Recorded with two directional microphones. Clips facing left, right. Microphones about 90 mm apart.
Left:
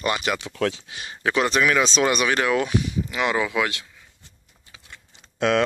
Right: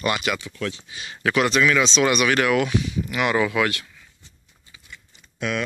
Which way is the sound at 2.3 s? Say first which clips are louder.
Right 2 dB; 25° left (ahead or behind).